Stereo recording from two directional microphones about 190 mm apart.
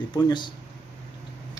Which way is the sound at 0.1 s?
25° left (ahead or behind).